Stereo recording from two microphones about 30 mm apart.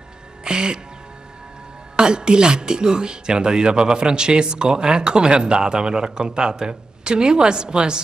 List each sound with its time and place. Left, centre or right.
0.4 s music: right
2.0 s speech: right